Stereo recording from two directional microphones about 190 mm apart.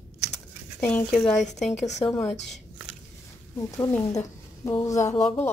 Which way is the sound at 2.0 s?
25° left (ahead or behind).